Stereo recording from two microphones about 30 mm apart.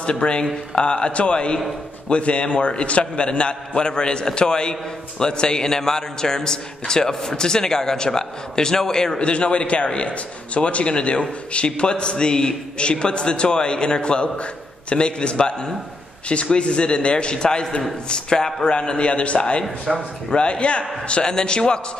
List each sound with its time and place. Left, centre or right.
0.0 s a man's voice: left
9.2 s a man's voice: left
19.9 s speech: centre
20.3 s a man's voice: left
21.1 s a man's voice: left